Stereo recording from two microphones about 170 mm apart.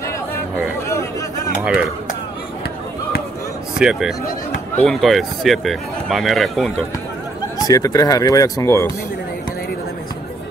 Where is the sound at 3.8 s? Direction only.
5° right (ahead or behind).